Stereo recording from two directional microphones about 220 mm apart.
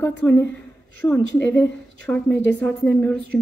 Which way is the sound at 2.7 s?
5° left (ahead or behind).